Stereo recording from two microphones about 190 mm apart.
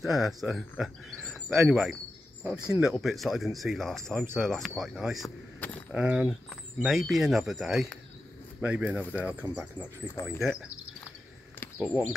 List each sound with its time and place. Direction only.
0.0 s speech: centre (ahead or behind)
5.6 s keys jangling: 10° left (ahead or behind)
5.9 s speech: 5° right (ahead or behind)
10.2 s speech: 15° left (ahead or behind)
11.8 s speech: 5° right (ahead or behind)